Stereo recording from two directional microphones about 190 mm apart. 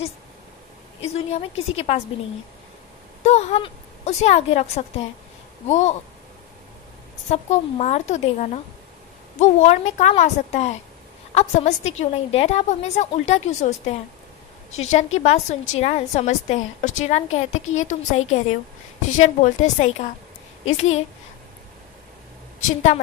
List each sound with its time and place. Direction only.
1.1 s a woman's voice: 35° left (ahead or behind)
3.3 s a woman's voice: 35° left (ahead or behind)
7.2 s a woman's voice: 35° left (ahead or behind)
22.7 s a woman's voice: 40° left (ahead or behind)